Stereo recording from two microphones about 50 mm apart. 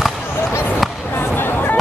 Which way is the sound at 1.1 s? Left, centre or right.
Left.